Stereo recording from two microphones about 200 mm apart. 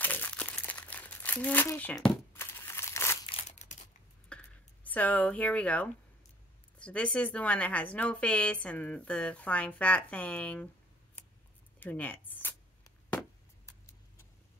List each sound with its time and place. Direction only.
0.0 s crumpling: 10° left (ahead or behind)
3.3 s scissors: 30° left (ahead or behind)
4.3 s a sound: 5° left (ahead or behind)
6.8 s speech: 5° left (ahead or behind)
11.8 s chop: 10° left (ahead or behind)